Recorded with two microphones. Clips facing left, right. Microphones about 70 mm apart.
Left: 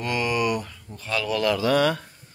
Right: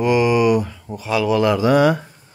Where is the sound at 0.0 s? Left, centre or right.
Centre.